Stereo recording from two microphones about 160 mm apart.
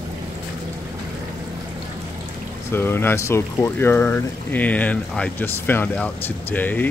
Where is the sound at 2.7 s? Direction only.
15° left (ahead or behind).